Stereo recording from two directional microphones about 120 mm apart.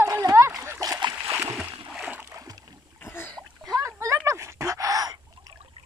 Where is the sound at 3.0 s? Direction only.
20° left (ahead or behind).